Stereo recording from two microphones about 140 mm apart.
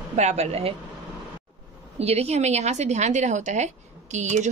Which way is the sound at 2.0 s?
50° right (ahead or behind).